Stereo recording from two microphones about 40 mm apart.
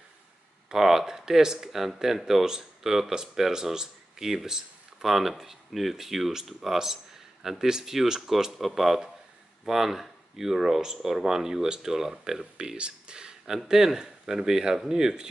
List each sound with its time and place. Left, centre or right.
0.7 s speech: centre
12.5 s speech: right
13.5 s speech: centre